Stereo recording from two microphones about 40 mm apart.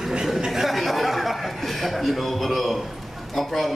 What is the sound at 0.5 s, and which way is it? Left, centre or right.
Chuckle, centre.